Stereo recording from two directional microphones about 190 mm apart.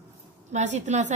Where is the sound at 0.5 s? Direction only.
40° right (ahead or behind).